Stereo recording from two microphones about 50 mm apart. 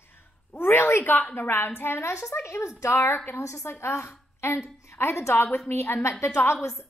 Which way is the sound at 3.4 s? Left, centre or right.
Left.